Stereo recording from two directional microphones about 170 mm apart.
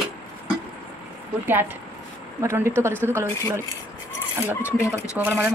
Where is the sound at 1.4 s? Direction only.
10° right (ahead or behind).